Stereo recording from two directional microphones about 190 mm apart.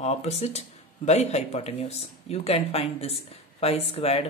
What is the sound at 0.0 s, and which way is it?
Speech, 35° left (ahead or behind).